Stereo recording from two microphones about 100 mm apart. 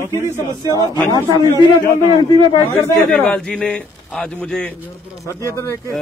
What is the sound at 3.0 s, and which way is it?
A man's voice, 10° left (ahead or behind).